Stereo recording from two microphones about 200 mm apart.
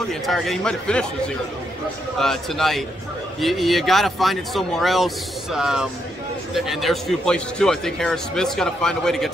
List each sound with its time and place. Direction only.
0.1 s a man's voice: centre (ahead or behind)
2.1 s a man's voice: centre (ahead or behind)